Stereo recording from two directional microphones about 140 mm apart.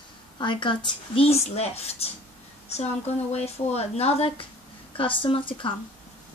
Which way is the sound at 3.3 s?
50° left (ahead or behind).